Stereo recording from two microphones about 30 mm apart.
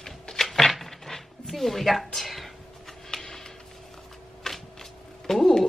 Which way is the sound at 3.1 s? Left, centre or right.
Centre.